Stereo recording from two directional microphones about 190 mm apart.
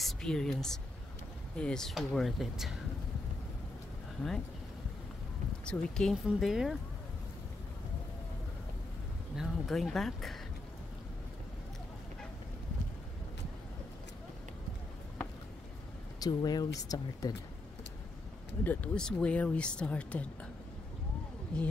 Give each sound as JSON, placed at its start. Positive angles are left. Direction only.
{"t": 0.0, "sound": "speech", "side_deg": 5}
{"t": 5.7, "sound": "speech", "side_deg": 5}
{"t": 9.3, "sound": "speech", "side_deg": 0}
{"t": 16.2, "sound": "speech", "side_deg": 20}
{"t": 18.6, "sound": "speech", "side_deg": 10}
{"t": 21.5, "sound": "speech", "side_deg": 5}